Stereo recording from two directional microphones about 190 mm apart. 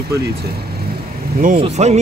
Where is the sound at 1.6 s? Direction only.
35° right (ahead or behind).